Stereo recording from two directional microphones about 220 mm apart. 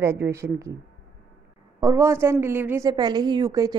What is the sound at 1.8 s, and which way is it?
A woman's voice, 15° right (ahead or behind).